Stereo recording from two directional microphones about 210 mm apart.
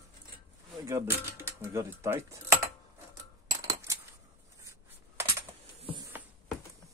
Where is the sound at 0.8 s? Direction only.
10° right (ahead or behind).